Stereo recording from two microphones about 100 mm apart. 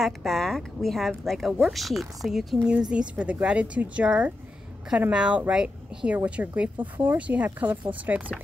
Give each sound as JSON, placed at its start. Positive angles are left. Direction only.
{"t": 0.0, "sound": "speech", "side_deg": 0}